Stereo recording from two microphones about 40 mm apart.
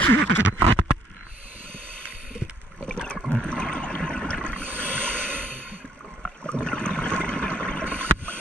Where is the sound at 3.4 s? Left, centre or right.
Left.